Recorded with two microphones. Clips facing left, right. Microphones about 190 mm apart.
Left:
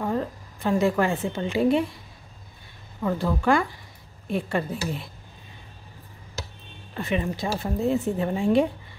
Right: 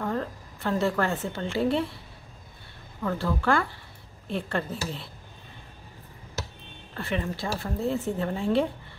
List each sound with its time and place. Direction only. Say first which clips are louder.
0.0 s a woman's voice: left 3 dB; 15° left (ahead or behind)
3.0 s a woman's voice: left 3 dB; 15° left (ahead or behind)
6.9 s a woman's voice: left 4 dB; 15° left (ahead or behind)